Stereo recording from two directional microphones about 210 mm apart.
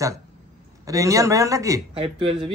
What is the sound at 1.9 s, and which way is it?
Speech, 25° right (ahead or behind).